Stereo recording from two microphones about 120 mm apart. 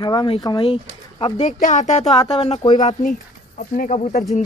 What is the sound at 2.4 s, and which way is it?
Speech, 50° left (ahead or behind).